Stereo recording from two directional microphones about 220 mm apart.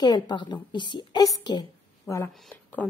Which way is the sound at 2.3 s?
Centre (ahead or behind).